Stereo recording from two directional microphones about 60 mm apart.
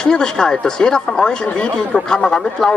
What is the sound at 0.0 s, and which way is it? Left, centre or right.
Speech, centre.